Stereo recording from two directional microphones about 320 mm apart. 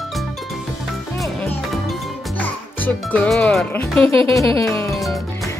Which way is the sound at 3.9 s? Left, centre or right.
Centre.